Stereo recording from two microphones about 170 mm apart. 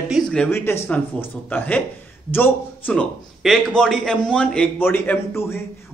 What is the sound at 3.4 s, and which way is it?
A man's voice, centre (ahead or behind).